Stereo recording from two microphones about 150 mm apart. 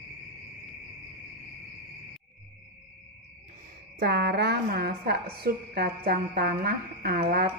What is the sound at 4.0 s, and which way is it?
A woman's voice, 90° right.